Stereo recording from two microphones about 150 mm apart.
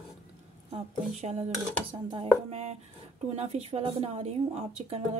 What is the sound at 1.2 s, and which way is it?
Speech, 45° right (ahead or behind).